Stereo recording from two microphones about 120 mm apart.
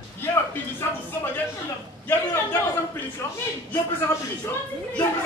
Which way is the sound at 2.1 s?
20° left (ahead or behind).